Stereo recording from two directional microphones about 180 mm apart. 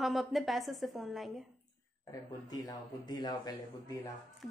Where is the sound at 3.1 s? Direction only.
25° left (ahead or behind).